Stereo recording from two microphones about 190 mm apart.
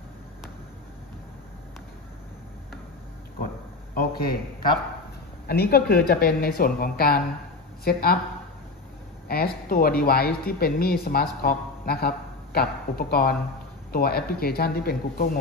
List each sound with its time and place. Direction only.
3.9 s a man's voice: 50° left (ahead or behind)
5.5 s a woman's voice: 55° left (ahead or behind)
9.3 s a woman's voice: 50° left (ahead or behind)